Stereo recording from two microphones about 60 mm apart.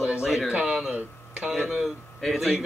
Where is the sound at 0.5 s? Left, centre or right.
Centre.